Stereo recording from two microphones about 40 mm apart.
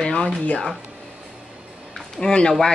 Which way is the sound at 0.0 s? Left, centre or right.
Left.